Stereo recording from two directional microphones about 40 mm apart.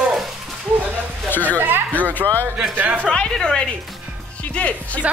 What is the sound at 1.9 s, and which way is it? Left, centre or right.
Music, left.